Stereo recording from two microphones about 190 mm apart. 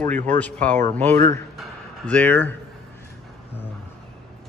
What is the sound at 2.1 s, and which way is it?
Speech, 10° left (ahead or behind).